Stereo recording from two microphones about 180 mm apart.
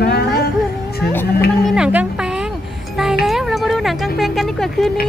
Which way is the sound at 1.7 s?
5° right (ahead or behind).